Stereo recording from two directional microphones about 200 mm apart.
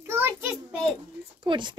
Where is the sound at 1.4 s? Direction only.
25° right (ahead or behind).